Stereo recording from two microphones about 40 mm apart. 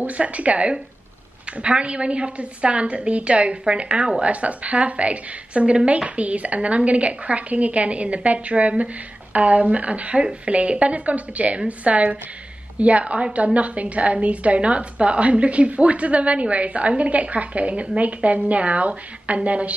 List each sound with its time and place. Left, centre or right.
0.0 s a woman's voice: right
4.2 s a woman's voice: right